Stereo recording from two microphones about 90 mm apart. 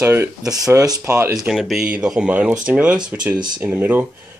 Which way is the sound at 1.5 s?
5° right (ahead or behind).